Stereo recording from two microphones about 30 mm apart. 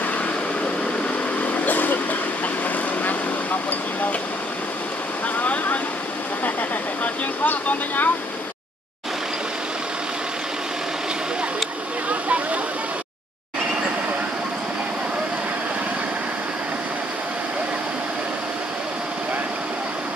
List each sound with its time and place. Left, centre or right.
1.5 s vehicle: left
5.4 s a sound: left
7.4 s speech: left